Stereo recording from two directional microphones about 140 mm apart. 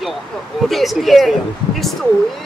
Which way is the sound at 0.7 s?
Centre (ahead or behind).